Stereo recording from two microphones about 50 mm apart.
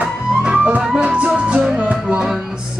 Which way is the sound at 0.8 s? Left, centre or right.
Centre.